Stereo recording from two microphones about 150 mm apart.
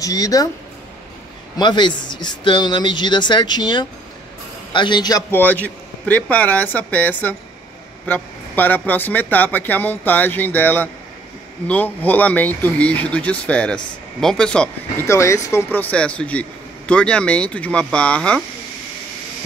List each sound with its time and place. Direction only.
0.0 s speech: 20° left (ahead or behind)
1.6 s speech: 30° left (ahead or behind)
5.3 s speech: 10° left (ahead or behind)
15.0 s speech: 20° left (ahead or behind)